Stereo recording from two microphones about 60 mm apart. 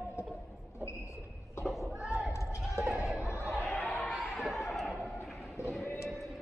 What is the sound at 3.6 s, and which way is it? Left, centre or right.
Basketball bounce, left.